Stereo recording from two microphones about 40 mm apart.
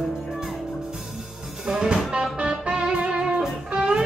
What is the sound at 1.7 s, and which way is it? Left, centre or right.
Music, centre.